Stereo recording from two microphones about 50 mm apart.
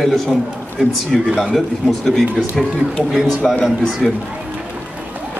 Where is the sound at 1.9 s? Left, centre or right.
Centre.